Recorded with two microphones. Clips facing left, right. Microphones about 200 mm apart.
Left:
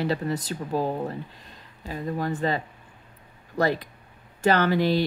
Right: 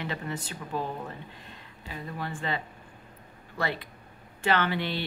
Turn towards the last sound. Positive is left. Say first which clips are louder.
# left 6 dB
turn(degrees=40)  # may be behind; listen again after turning